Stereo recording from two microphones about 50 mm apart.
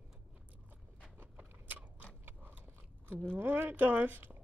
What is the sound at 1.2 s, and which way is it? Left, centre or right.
Biting, right.